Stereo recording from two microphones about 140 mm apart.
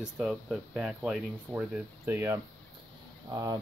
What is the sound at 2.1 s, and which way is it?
Speech, 15° right (ahead or behind).